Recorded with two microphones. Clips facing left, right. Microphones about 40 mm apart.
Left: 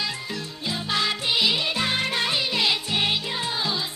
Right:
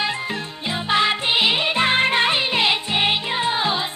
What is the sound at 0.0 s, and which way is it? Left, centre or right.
Music, right.